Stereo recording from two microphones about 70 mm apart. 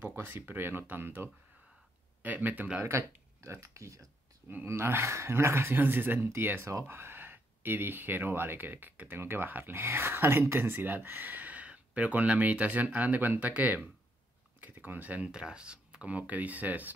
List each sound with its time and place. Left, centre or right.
0.0 s speech: right
2.8 s speech: right
4.6 s speech: right